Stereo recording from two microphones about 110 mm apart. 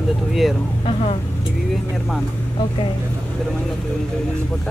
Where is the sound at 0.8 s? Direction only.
70° left (ahead or behind).